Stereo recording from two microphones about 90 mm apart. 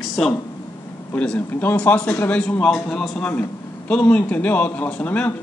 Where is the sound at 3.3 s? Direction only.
15° left (ahead or behind).